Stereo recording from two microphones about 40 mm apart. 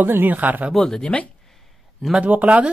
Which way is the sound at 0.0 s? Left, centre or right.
Right.